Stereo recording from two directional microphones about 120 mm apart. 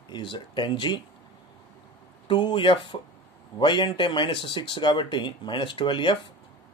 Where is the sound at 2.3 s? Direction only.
45° left (ahead or behind).